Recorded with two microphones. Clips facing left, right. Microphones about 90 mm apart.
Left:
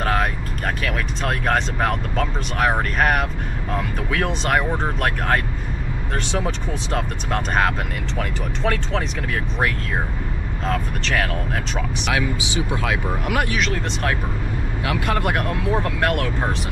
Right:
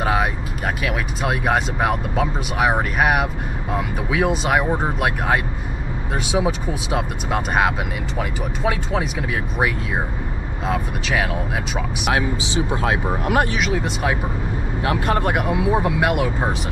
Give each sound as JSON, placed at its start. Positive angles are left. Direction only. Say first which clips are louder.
{"t": 0.0, "sound": "vehicle", "louder": "right 1 dB", "side_deg": -10}
{"t": 0.8, "sound": "speech", "louder": "right 3 dB", "side_deg": -10}
{"t": 12.5, "sound": "speech", "louder": "right 3 dB", "side_deg": -25}
{"t": 13.6, "sound": "speech", "louder": "right 2 dB", "side_deg": -10}
{"t": 14.8, "sound": "speech", "louder": "right 3 dB", "side_deg": -25}
{"t": 15.2, "sound": "speech", "louder": "right 2 dB", "side_deg": -10}